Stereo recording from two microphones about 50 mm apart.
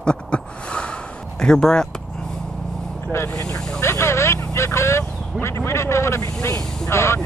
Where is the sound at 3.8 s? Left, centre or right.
Left.